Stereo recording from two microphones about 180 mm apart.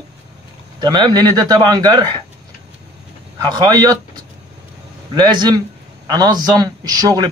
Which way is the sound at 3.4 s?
25° right (ahead or behind).